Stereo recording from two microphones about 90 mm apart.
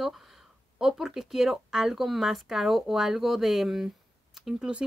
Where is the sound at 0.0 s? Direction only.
5° right (ahead or behind).